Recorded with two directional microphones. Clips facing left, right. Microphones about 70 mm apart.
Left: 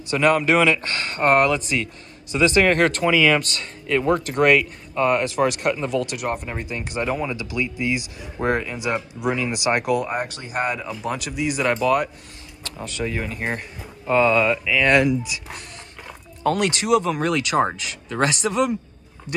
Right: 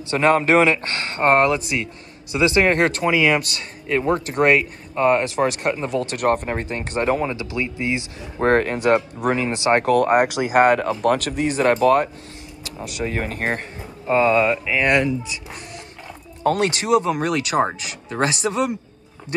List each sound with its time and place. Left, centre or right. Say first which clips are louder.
0.1 s speech: right 2 dB; right
6.1 s speech: right 6 dB; right
7.2 s speech: right 2 dB; right
8.5 s speech: right 7 dB; right
9.2 s speech: right 2 dB; right
9.9 s speech: right 8 dB; right
11.0 s speech: right 7 dB; right
14.0 s speech: right 1 dB; right
16.4 s speech: right 1 dB; right